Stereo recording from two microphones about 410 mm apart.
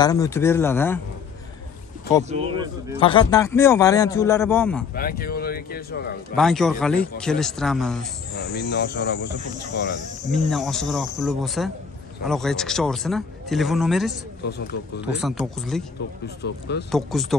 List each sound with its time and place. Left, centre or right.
0.0 s speech: centre
2.2 s speech: centre
3.0 s a man's voice: centre
4.9 s speech: left
6.3 s speech: centre
8.4 s speech: left
10.3 s speech: centre
16.4 s speech: left
16.9 s speech: centre